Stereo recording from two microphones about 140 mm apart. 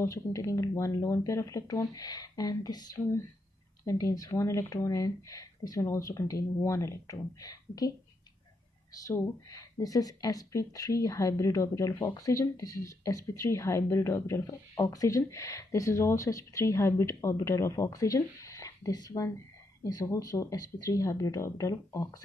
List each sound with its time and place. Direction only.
0.0 s a woman's voice: 25° left (ahead or behind)
9.0 s a woman's voice: 20° left (ahead or behind)